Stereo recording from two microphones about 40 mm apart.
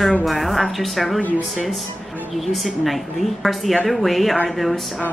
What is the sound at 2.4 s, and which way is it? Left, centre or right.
A woman's voice, centre.